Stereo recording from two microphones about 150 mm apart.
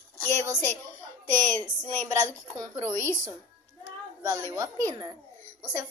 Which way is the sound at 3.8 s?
20° right (ahead or behind).